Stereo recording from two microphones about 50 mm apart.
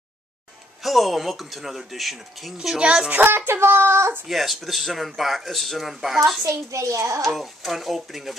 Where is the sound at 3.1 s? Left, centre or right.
Right.